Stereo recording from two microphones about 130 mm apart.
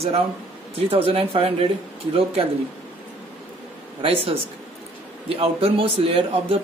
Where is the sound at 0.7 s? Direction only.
45° right (ahead or behind).